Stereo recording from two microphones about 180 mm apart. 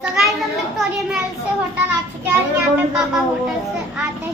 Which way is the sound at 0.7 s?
Centre (ahead or behind).